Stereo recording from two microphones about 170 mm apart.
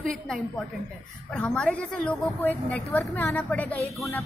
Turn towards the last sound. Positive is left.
turn(degrees=10)  # may be behind; listen again after turning